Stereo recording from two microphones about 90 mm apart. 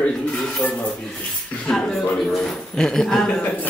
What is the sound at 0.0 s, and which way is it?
A man's voice, 10° left (ahead or behind).